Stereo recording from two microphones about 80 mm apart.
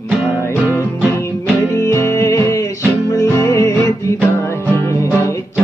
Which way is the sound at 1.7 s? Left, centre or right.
Left.